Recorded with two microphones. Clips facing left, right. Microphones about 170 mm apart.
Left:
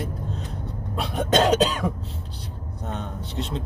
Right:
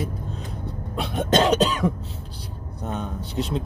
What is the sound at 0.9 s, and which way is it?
Cough, centre (ahead or behind).